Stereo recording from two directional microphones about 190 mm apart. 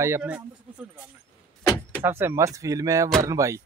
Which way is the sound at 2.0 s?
10° right (ahead or behind).